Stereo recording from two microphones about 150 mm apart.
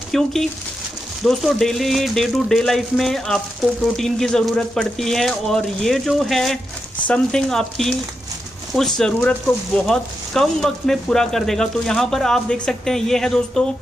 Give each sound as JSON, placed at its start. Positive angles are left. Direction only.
{"t": 0.1, "sound": "speech", "side_deg": 0}